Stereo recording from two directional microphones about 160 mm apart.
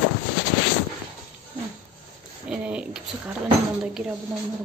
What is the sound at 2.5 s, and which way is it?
Speech, 5° right (ahead or behind).